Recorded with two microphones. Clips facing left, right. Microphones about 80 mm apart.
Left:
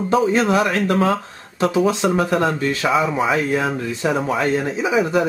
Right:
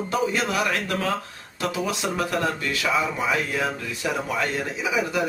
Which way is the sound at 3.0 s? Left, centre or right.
Left.